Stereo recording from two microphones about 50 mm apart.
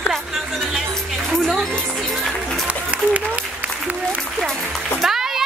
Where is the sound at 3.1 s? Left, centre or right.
Right.